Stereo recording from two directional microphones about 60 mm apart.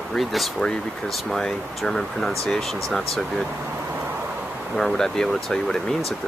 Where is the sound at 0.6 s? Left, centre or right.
Centre.